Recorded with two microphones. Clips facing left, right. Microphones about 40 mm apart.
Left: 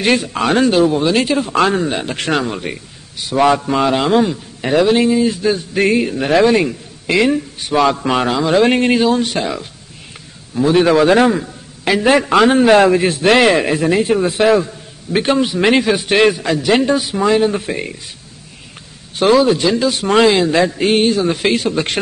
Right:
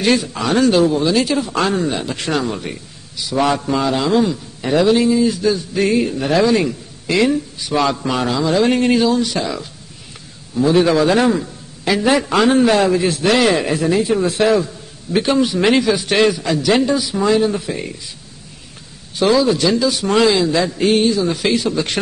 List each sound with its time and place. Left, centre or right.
0.0 s a man's voice: left
0.7 s a man's voice: left
2.4 s a man's voice: left
3.2 s a sound: left
3.4 s a man's voice: left
3.8 s a man's voice: left
5.9 s a man's voice: left
10.6 s a man's voice: left
14.1 s a man's voice: centre
15.1 s a man's voice: left
15.7 s a man's voice: left
19.1 s a man's voice: left